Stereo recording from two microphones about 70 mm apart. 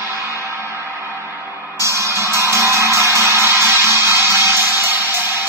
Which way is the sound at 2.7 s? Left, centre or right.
Right.